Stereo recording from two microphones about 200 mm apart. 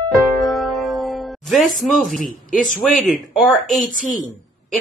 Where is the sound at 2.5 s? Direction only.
40° left (ahead or behind).